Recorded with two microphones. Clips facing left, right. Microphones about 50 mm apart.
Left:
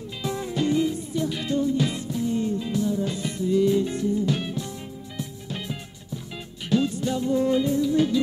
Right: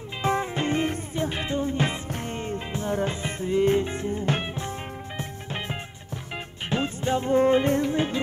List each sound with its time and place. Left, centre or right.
0.2 s music: right
6.7 s music: right
7.9 s music: right